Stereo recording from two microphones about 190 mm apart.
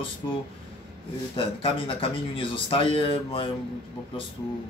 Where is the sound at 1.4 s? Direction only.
30° left (ahead or behind).